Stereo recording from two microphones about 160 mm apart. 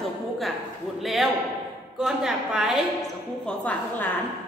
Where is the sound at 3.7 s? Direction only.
10° left (ahead or behind).